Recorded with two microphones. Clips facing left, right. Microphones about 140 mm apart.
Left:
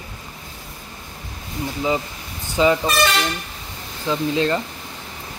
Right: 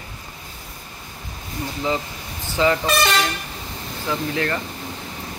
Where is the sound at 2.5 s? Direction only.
15° left (ahead or behind).